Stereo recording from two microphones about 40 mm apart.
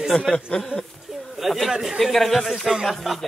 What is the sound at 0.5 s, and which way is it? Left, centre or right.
Speech, left.